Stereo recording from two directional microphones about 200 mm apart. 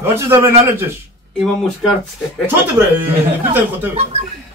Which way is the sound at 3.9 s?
30° right (ahead or behind).